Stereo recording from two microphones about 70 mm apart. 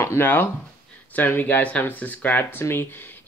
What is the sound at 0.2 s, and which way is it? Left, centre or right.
Speech, left.